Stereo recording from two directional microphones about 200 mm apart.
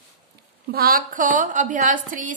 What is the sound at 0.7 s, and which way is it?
A woman's voice, 50° right (ahead or behind).